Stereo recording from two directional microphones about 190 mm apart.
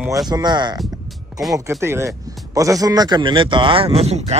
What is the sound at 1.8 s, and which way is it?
Speech, 15° right (ahead or behind).